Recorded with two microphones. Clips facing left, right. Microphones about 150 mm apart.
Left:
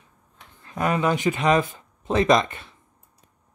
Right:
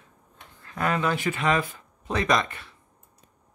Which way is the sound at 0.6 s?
20° left (ahead or behind).